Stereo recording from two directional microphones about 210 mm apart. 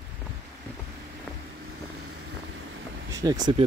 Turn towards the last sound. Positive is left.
turn(degrees=-20)  # may be behind; listen again after turning